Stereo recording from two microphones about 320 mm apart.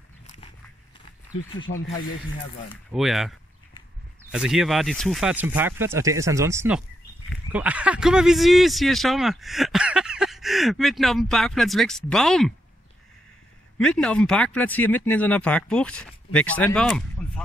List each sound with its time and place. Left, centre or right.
2.7 s speech: centre
13.7 s speech: centre